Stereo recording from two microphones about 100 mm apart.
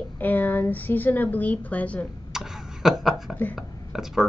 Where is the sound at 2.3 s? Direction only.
5° right (ahead or behind).